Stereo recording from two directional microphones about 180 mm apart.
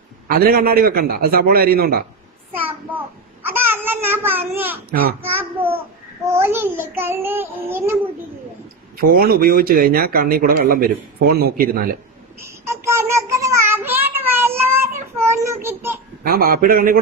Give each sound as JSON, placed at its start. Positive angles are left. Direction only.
{"t": 0.3, "sound": "speech", "side_deg": -55}
{"t": 2.5, "sound": "a sound", "side_deg": -10}
{"t": 5.2, "sound": "child singing", "side_deg": -10}
{"t": 8.9, "sound": "speech", "side_deg": -55}
{"t": 12.4, "sound": "child singing", "side_deg": -15}
{"t": 16.3, "sound": "a man's voice", "side_deg": -55}